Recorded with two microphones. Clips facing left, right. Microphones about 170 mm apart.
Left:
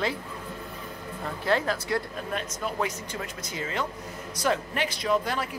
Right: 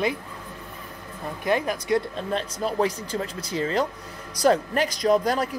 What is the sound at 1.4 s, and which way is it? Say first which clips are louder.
A woman's voice: right 2 dB; 15° right (ahead or behind).